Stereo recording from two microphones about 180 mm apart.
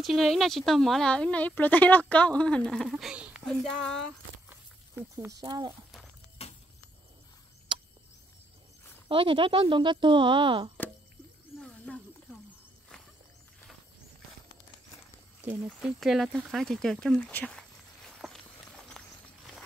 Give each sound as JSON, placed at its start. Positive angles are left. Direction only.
{"t": 0.0, "sound": "a woman's voice", "side_deg": 0}
{"t": 4.5, "sound": "snake", "side_deg": -15}
{"t": 5.4, "sound": "speech", "side_deg": -25}
{"t": 6.4, "sound": "vehicle", "side_deg": 35}
{"t": 7.7, "sound": "a sound", "side_deg": -25}
{"t": 9.1, "sound": "speech", "side_deg": -30}
{"t": 11.6, "sound": "wild animals", "side_deg": 5}
{"t": 15.8, "sound": "a sound", "side_deg": 0}